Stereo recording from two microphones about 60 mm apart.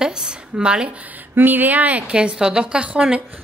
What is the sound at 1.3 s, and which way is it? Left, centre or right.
A woman's voice, right.